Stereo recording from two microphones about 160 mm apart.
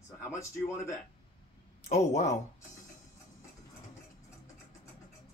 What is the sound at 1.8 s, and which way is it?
Speech, 45° left (ahead or behind).